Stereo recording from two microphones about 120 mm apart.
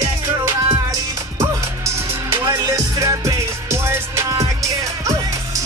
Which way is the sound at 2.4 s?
25° right (ahead or behind).